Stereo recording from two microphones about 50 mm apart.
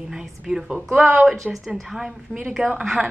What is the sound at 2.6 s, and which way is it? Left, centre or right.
Speech, right.